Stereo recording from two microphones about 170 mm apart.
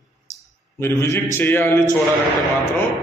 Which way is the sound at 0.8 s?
15° left (ahead or behind).